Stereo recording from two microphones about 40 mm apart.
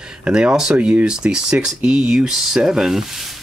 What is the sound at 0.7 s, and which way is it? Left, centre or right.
Speech, right.